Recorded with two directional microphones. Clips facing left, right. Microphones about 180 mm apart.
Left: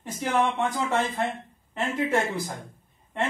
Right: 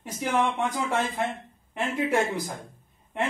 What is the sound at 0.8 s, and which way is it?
Speech, 10° right (ahead or behind).